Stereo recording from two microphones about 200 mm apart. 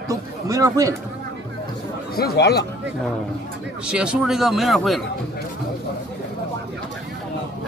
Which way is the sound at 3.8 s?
5° right (ahead or behind).